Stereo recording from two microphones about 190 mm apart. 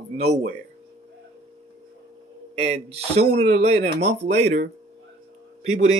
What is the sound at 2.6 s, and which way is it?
Speech, 35° right (ahead or behind).